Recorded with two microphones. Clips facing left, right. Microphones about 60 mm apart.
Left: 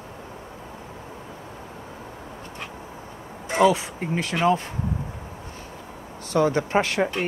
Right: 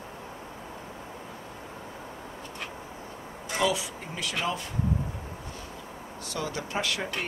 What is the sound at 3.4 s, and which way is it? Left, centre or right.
Speech, left.